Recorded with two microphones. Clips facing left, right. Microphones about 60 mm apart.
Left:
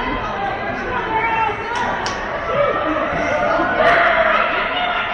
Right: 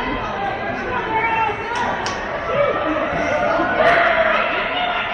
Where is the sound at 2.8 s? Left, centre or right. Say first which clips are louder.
Left 1 dB; centre.